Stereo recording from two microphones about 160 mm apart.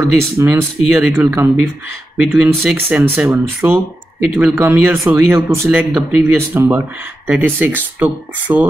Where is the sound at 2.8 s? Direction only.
10° right (ahead or behind).